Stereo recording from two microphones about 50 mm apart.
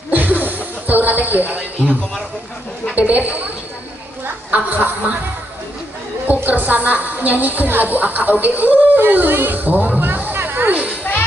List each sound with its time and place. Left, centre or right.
0.1 s a sound: right
2.9 s speech: right
6.2 s a woman's voice: right